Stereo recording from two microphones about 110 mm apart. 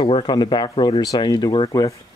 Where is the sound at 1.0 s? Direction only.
35° left (ahead or behind).